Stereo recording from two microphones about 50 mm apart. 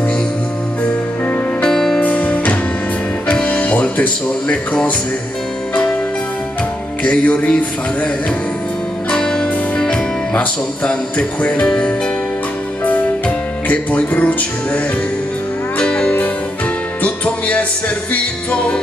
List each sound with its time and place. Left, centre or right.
1.6 s music: centre
2.0 s music: left
7.0 s music: left
9.1 s music: centre
13.7 s music: left
15.8 s music: left